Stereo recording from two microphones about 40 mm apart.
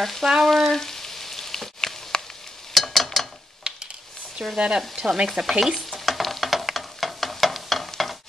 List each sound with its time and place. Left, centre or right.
0.0 s frying: centre
2.7 s stir: centre
4.6 s frying: right
4.9 s stir: centre